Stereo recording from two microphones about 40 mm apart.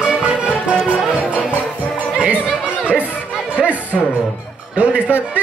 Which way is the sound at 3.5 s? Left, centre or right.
Right.